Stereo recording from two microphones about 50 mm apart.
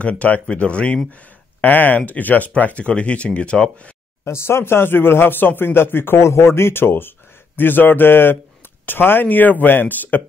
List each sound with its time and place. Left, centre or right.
0.0 s speech: left
1.6 s speech: left; by 3.9 s centre
4.2 s speech: left
6.1 s speech: left